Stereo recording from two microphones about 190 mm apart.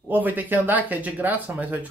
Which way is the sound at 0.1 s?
10° right (ahead or behind).